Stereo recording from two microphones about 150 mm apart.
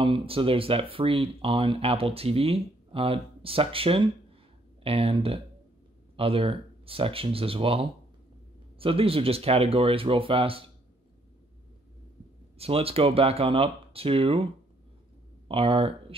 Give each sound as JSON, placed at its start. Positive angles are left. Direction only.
{"t": 0.0, "sound": "speech", "side_deg": -35}
{"t": 12.5, "sound": "speech", "side_deg": -40}
{"t": 15.4, "sound": "speech", "side_deg": -35}